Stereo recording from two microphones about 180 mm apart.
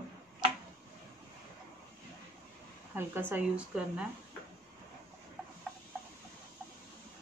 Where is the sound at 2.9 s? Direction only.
10° right (ahead or behind).